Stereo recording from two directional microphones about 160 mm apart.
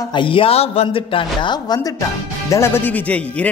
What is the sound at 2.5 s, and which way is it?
Speech, 15° left (ahead or behind).